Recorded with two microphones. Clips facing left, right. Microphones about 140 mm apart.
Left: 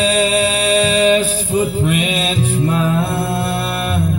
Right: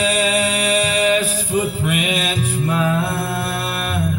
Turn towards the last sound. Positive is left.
turn(degrees=30)  # may be behind; listen again after turning